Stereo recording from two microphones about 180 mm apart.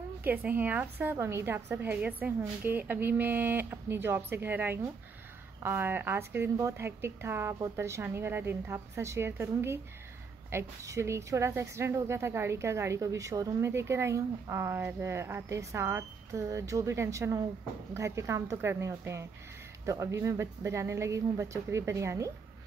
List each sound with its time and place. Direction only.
0.2 s a woman's voice: 10° right (ahead or behind)